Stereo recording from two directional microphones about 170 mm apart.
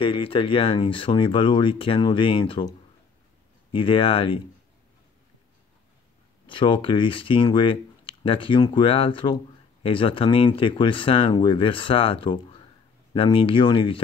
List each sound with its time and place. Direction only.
0.0 s speech: 30° left (ahead or behind)
3.7 s speech: 30° left (ahead or behind)
6.4 s speech: 30° left (ahead or behind)